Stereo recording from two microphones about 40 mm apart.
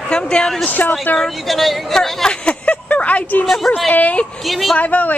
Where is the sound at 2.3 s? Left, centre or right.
Left.